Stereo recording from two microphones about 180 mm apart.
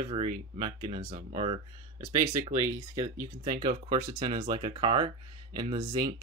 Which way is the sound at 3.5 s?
25° right (ahead or behind).